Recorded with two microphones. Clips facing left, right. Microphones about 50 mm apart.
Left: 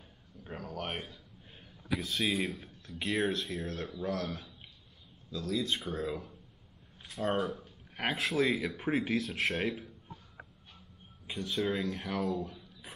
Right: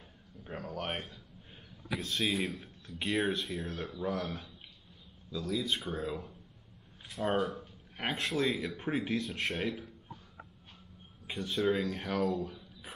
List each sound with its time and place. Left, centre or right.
0.4 s speech: centre
11.2 s speech: centre